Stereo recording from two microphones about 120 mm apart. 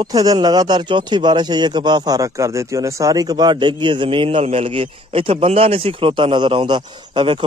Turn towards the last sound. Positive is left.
turn(degrees=-45)  # may be behind; listen again after turning